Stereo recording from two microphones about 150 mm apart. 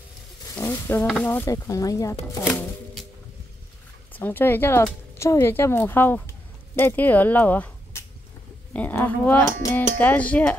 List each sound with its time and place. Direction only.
0.6 s speech: 15° left (ahead or behind)
2.4 s chopping: 5° left (ahead or behind)
4.1 s a woman's voice: 15° left (ahead or behind)